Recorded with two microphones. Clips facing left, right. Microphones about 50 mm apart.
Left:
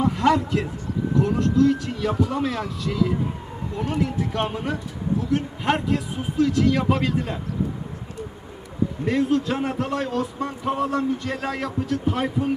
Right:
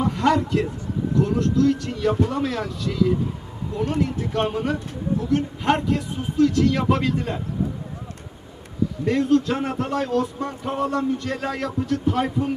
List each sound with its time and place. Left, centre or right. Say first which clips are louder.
0.0 s a sound: even; centre
1.1 s speech: even; centre
1.8 s speech: right 2 dB; centre
9.0 s speech: right 3 dB; centre